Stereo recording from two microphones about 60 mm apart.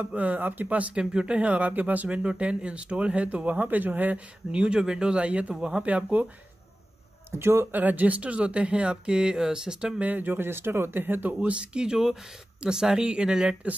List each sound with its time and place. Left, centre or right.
0.0 s speech: right
4.5 s speech: centre
7.2 s a man's voice: right
7.7 s speech: right
11.4 s speech: centre